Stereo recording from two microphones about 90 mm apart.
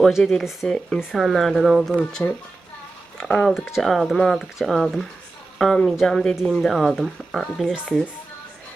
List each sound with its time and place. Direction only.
0.0 s speech: 5° left (ahead or behind)
2.2 s speech: 20° left (ahead or behind)
3.2 s speech: 5° left (ahead or behind)